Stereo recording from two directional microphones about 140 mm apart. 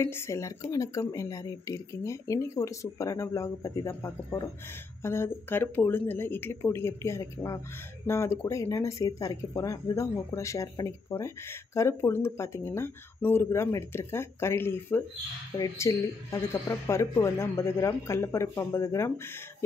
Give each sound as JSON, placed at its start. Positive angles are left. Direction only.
{"t": 0.0, "sound": "speech", "side_deg": 20}